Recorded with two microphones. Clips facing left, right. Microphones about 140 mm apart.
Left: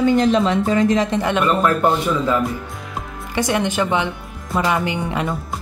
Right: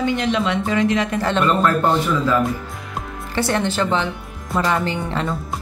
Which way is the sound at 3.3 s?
15° left (ahead or behind).